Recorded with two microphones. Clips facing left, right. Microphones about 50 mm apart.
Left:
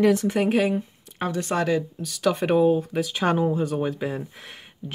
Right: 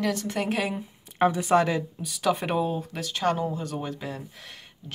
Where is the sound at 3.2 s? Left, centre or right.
Left.